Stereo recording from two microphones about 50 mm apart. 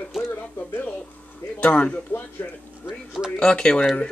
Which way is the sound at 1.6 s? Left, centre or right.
Left.